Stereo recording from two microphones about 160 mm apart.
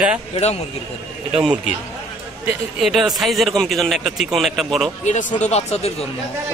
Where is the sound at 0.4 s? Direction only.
40° left (ahead or behind).